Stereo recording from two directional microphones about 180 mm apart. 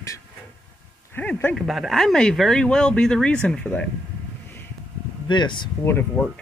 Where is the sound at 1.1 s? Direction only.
10° left (ahead or behind).